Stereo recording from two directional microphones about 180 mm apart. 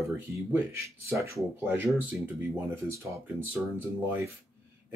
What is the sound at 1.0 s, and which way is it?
Speech, 15° right (ahead or behind).